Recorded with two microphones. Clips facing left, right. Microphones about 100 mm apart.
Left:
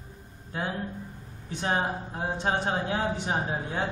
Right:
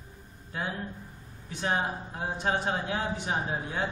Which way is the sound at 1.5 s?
30° left (ahead or behind).